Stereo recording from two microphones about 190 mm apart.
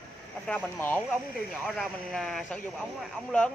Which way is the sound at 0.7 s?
10° left (ahead or behind).